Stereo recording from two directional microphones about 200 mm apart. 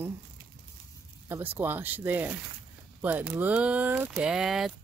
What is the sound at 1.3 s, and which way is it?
Speech, 10° right (ahead or behind).